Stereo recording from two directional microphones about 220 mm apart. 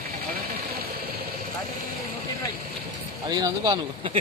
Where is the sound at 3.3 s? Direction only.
20° right (ahead or behind).